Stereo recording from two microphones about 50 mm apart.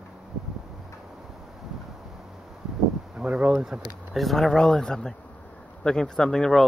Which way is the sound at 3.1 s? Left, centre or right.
Centre.